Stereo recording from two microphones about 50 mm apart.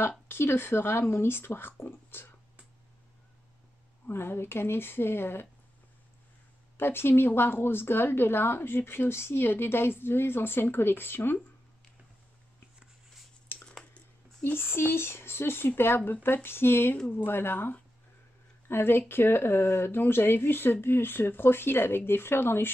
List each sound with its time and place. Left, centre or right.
0.3 s a woman's voice: left
4.1 s a woman's voice: left
6.8 s a woman's voice: left
14.4 s a woman's voice: left